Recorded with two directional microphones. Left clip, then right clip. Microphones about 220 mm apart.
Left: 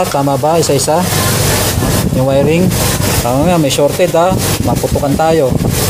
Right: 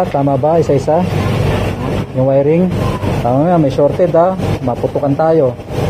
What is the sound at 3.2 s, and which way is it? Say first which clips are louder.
Speech: right 1 dB; 20° left (ahead or behind).